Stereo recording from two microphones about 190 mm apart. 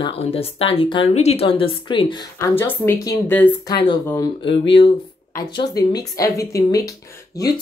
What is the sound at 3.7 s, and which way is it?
Speech, 25° left (ahead or behind).